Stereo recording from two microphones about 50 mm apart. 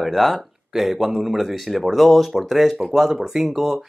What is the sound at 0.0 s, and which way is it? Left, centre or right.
Speech, centre.